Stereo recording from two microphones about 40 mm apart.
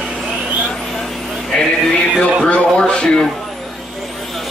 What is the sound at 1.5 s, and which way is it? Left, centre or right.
Speech, centre.